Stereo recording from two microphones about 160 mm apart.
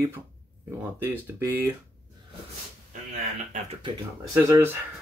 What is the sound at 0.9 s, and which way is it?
Speech, 15° right (ahead or behind).